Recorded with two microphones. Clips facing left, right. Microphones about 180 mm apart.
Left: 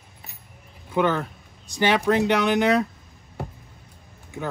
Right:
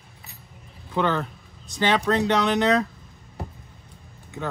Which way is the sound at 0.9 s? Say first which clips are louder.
Left 2 dB; 10° left (ahead or behind).